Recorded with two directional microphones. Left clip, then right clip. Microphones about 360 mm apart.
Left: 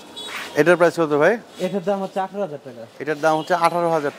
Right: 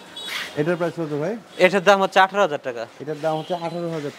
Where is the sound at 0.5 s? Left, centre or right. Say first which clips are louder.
Left 9 dB; centre.